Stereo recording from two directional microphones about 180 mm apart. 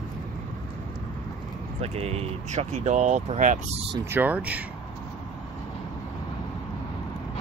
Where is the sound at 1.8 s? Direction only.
35° right (ahead or behind).